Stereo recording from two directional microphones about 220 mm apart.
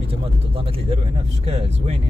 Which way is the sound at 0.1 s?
25° right (ahead or behind).